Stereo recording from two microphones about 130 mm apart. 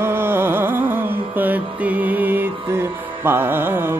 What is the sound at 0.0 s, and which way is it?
Music, 15° right (ahead or behind).